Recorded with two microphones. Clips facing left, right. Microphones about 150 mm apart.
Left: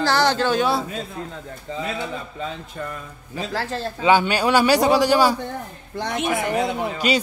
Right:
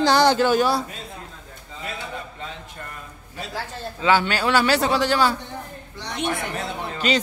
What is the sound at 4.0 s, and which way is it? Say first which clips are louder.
Speech: left 2 dB; 15° left (ahead or behind).